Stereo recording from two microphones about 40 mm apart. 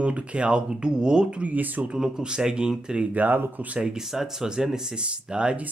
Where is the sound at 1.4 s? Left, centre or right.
Right.